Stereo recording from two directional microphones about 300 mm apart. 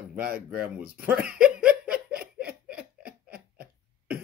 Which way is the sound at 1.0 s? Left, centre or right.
Centre.